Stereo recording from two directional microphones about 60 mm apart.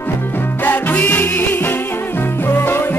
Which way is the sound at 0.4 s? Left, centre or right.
Left.